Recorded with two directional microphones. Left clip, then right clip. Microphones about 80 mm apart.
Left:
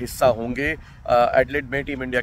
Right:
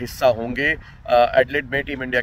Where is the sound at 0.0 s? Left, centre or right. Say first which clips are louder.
Right 1 dB; left.